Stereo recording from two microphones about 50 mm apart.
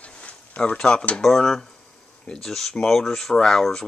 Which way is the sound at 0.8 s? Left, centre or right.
Centre.